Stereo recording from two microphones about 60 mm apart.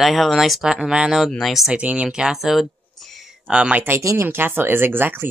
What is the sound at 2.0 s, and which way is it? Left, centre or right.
Speech, centre.